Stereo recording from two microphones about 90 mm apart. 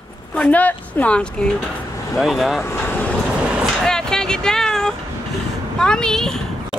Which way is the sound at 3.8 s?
5° left (ahead or behind).